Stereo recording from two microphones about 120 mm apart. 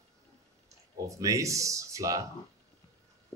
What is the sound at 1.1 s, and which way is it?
A man's voice, 25° right (ahead or behind).